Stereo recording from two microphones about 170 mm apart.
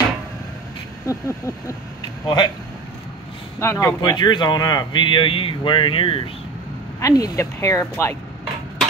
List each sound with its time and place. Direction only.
1.0 s a sound: 15° left (ahead or behind)
2.2 s speech: 25° left (ahead or behind)
3.5 s speech: 15° left (ahead or behind); by 6.2 s 30° left (ahead or behind)
7.0 s speech: 20° left (ahead or behind)